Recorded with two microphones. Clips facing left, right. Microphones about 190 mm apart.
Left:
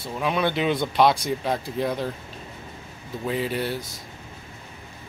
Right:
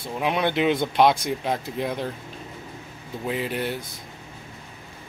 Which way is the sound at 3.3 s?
10° right (ahead or behind).